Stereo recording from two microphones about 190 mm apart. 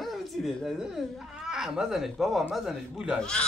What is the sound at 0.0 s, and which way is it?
Speech, centre (ahead or behind).